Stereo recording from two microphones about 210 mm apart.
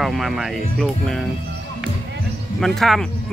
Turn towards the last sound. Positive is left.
turn(degrees=0)  # may be behind; listen again after turning